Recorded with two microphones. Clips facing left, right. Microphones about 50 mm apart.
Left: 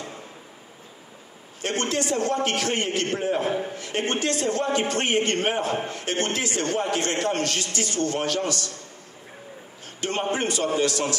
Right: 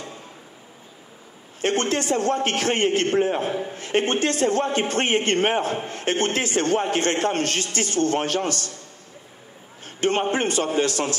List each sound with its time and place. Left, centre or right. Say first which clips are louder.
1.6 s a man's voice: right 3 dB; right
9.9 s a man's voice: right 4 dB; right